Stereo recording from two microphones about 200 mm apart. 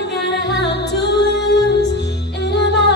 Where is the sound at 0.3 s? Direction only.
60° left (ahead or behind).